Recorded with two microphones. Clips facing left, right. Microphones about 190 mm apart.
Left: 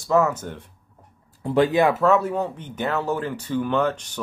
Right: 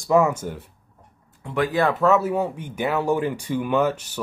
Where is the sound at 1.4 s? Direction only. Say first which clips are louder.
Left 5 dB; 25° left (ahead or behind).